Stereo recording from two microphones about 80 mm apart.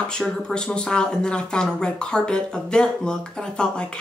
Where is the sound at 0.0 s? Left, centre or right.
Centre.